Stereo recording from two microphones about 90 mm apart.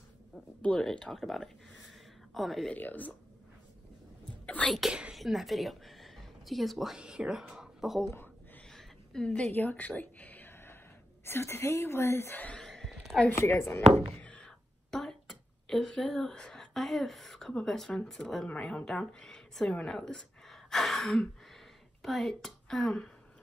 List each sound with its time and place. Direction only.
0.6 s speech: 10° left (ahead or behind)
2.7 s speech: 20° left (ahead or behind)
4.6 s speech: centre (ahead or behind)
8.7 s a sound: 5° left (ahead or behind); by 10.8 s 25° left (ahead or behind)
11.2 s speech: 25° left (ahead or behind); by 12.9 s 5° left (ahead or behind)
12.9 s a sound: centre (ahead or behind)
13.4 s a woman's voice: 25° left (ahead or behind); by 23.0 s 5° left (ahead or behind)